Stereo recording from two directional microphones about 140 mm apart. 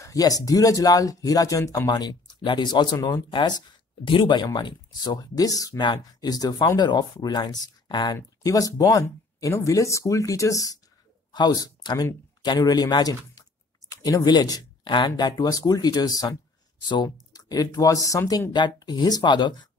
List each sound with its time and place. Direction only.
0.0 s speech: 25° left (ahead or behind)
18.5 s speech: 30° left (ahead or behind)